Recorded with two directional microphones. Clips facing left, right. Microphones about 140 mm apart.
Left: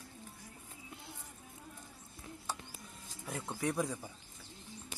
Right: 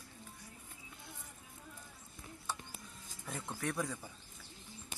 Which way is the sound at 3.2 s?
20° left (ahead or behind).